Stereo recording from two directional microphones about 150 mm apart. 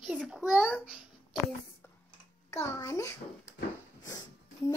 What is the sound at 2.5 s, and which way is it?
Speech, 20° left (ahead or behind).